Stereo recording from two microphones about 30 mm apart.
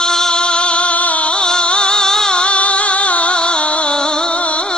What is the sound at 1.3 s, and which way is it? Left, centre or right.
Music, left.